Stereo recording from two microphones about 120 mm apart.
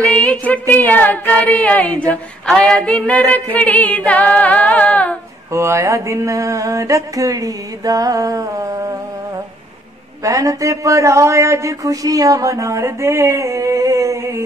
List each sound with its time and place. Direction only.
0.1 s a sound: 10° left (ahead or behind)
2.7 s music: 5° left (ahead or behind)
5.5 s speech: 25° right (ahead or behind)
10.2 s speech: 25° right (ahead or behind)